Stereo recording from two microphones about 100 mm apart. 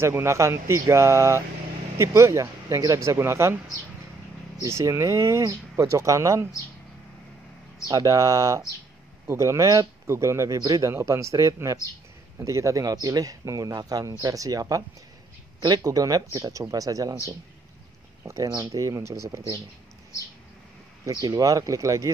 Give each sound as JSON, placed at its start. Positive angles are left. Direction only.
{"t": 0.0, "sound": "speech", "side_deg": -25}
{"t": 4.6, "sound": "speech", "side_deg": -30}
{"t": 7.9, "sound": "speech", "side_deg": -35}
{"t": 21.1, "sound": "speech", "side_deg": -45}